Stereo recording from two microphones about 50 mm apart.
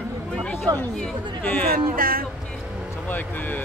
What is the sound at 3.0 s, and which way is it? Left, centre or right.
Speech, left.